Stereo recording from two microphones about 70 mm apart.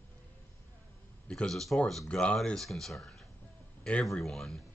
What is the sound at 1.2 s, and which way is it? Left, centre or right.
Speech, centre.